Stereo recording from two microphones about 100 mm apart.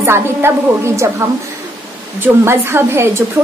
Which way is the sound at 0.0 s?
25° right (ahead or behind).